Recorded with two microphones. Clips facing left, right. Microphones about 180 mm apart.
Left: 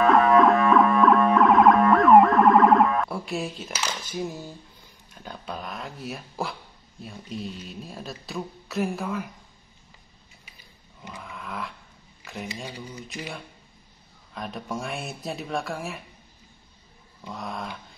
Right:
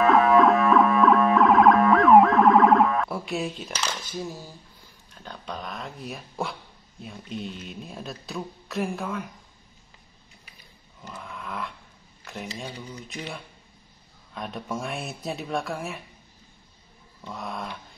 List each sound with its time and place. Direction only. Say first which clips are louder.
0.0 s music: even; centre (ahead or behind)
3.8 s cutlery: left 2 dB; 10° left (ahead or behind)
5.1 s speech: left 1 dB; 10° left (ahead or behind)
11.0 s a sound: right 1 dB; centre (ahead or behind)
12.2 s speech: even; centre (ahead or behind)
12.7 s cutlery: even; 10° left (ahead or behind)
13.1 s speech: even; centre (ahead or behind)
17.2 s speech: even; centre (ahead or behind)